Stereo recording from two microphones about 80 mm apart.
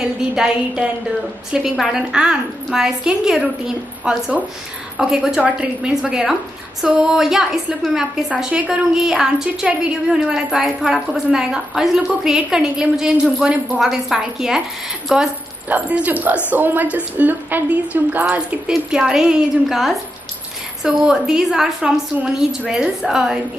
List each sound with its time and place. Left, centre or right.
0.0 s a woman's voice: centre
15.7 s a woman's voice: centre
18.7 s a woman's voice: centre